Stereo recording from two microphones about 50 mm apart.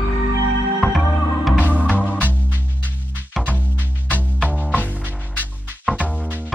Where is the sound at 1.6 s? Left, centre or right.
Right.